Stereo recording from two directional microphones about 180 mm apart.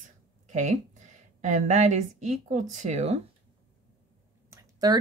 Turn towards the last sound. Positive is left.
turn(degrees=-20)  # may be behind; listen again after turning